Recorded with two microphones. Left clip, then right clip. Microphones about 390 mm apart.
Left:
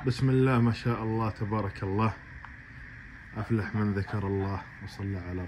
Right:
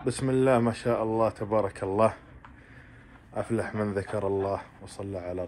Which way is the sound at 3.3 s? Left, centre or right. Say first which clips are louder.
Right 4 dB; centre.